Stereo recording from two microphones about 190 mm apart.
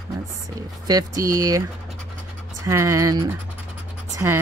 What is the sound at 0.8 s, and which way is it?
Speech, 20° right (ahead or behind).